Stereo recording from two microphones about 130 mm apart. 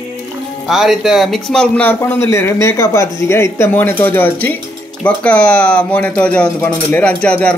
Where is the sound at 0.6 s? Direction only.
5° right (ahead or behind).